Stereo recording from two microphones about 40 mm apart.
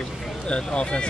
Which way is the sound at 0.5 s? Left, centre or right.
Left.